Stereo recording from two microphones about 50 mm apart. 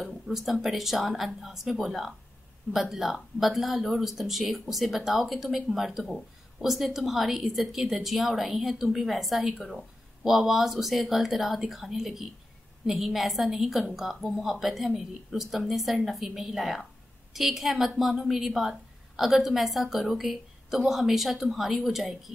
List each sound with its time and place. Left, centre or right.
0.3 s a woman's voice: centre